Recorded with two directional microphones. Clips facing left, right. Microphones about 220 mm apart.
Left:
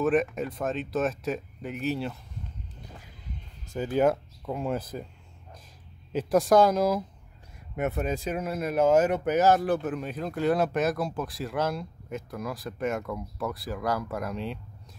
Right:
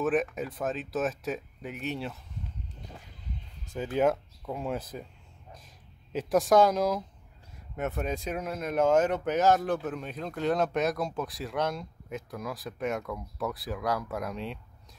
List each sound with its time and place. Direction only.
0.0 s speech: centre (ahead or behind)
3.7 s speech: centre (ahead or behind)
6.1 s speech: centre (ahead or behind)